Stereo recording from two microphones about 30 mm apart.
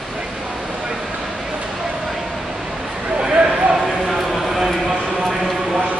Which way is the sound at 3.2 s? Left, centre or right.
Right.